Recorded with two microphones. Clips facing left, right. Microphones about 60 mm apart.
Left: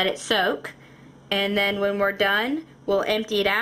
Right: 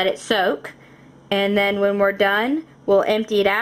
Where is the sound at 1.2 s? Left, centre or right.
Centre.